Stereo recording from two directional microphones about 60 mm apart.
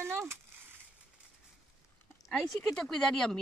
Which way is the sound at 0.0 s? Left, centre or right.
Right.